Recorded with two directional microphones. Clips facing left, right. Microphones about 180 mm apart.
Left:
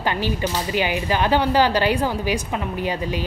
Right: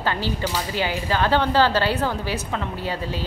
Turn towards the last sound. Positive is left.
turn(degrees=15)  # may be behind; listen again after turning